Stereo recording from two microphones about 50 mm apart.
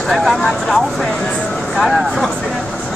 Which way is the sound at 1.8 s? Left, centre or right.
Centre.